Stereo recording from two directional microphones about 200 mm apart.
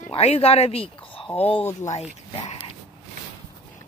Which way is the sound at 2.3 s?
30° left (ahead or behind).